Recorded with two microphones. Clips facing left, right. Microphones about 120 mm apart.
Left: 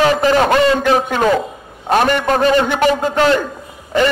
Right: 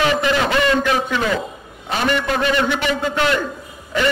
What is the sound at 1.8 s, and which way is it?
A man's voice, 50° left (ahead or behind).